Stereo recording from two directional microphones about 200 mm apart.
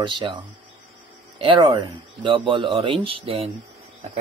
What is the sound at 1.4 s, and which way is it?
Speech, 25° right (ahead or behind).